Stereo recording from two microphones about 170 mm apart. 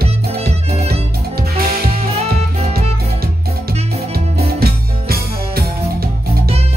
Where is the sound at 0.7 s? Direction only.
35° right (ahead or behind).